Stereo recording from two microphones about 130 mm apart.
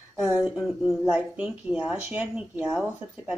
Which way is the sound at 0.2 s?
5° right (ahead or behind).